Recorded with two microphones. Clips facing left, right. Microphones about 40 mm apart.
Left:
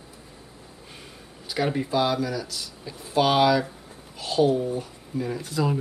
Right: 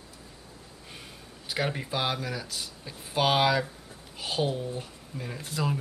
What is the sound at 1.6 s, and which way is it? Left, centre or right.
Speech, centre.